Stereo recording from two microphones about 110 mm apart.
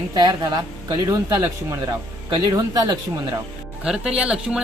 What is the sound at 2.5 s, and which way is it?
Speech, 35° right (ahead or behind).